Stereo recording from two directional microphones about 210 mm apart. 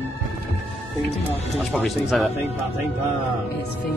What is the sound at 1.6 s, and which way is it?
Speech, centre (ahead or behind).